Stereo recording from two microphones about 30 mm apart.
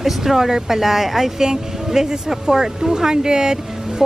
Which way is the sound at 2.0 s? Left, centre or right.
Right.